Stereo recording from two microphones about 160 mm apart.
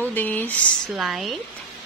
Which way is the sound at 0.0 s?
10° left (ahead or behind).